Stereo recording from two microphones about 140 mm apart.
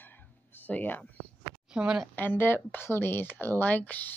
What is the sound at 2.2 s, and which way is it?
A woman's voice, 15° left (ahead or behind).